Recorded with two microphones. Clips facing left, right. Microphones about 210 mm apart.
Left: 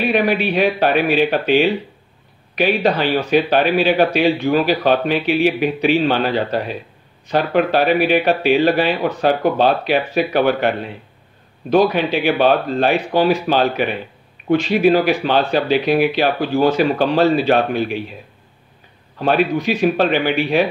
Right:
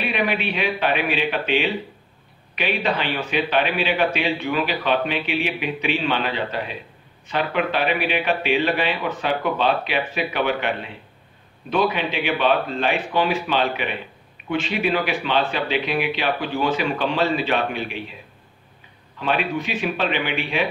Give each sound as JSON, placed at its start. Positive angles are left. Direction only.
{"t": 0.0, "sound": "a man's voice", "side_deg": 40}
{"t": 19.1, "sound": "a man's voice", "side_deg": 40}